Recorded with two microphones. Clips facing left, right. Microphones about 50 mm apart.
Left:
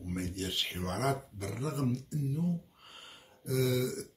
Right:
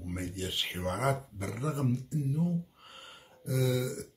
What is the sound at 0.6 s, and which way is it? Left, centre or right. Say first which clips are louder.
Speech: right 2 dB; right.